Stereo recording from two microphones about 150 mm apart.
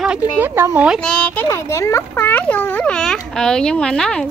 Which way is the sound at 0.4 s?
15° right (ahead or behind).